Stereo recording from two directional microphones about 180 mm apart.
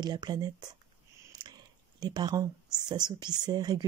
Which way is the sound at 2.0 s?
25° right (ahead or behind).